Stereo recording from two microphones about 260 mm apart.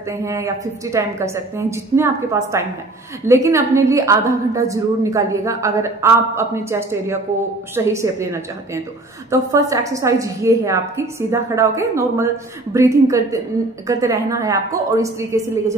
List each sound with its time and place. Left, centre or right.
0.2 s a woman's voice: centre